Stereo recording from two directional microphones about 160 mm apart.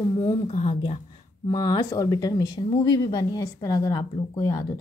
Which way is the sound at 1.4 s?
25° left (ahead or behind).